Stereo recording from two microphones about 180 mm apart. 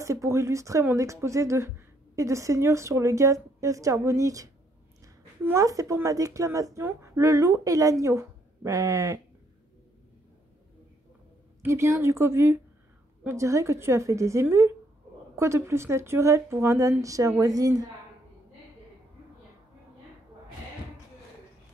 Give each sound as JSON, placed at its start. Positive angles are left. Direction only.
{"t": 0.0, "sound": "a woman's voice", "side_deg": -15}
{"t": 11.6, "sound": "speech", "side_deg": -15}